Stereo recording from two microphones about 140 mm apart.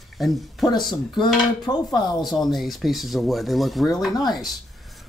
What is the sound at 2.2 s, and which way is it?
Speech, centre (ahead or behind).